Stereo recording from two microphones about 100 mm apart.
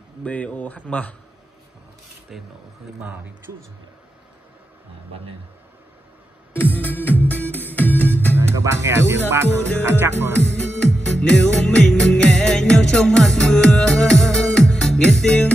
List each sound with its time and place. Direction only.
0.2 s a man's voice: 15° left (ahead or behind)
2.3 s speech: 5° right (ahead or behind)
6.5 s music: 20° left (ahead or behind)
8.4 s speech: 25° right (ahead or behind)
10.3 s music: 15° left (ahead or behind)